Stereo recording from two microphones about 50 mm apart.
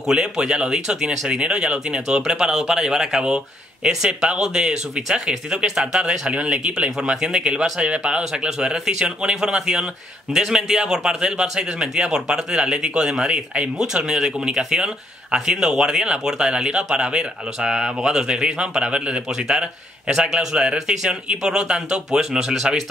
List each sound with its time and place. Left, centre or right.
0.0 s speech: centre
8.2 s speech: centre
20.1 s speech: centre